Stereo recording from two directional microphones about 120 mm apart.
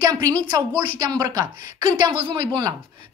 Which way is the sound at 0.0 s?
30° right (ahead or behind).